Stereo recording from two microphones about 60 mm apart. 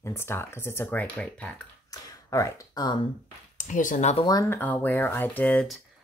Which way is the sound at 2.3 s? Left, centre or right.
Left.